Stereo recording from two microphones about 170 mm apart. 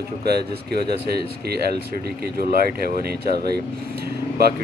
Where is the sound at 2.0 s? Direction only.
65° right (ahead or behind).